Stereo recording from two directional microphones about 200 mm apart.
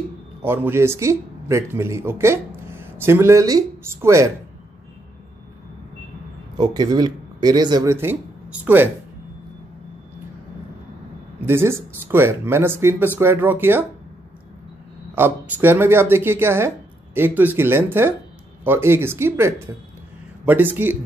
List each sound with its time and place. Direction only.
0.4 s speech: 10° right (ahead or behind)
6.6 s speech: 20° right (ahead or behind)
11.4 s speech: 10° right (ahead or behind)
15.1 s speech: 10° right (ahead or behind)